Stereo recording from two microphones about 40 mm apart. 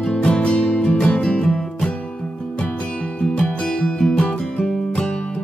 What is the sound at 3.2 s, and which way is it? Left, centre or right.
Music, left.